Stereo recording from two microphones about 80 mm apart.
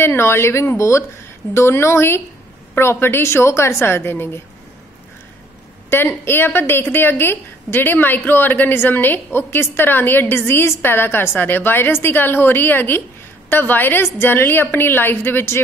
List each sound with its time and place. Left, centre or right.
0.0 s a woman's voice: left
5.9 s a woman's voice: left